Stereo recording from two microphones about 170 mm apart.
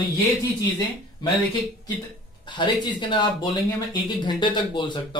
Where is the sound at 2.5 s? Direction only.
25° left (ahead or behind).